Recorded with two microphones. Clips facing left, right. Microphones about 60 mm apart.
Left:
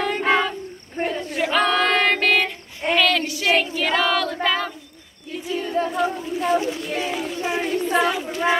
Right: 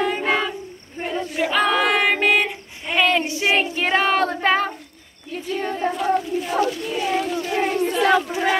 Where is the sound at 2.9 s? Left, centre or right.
Right.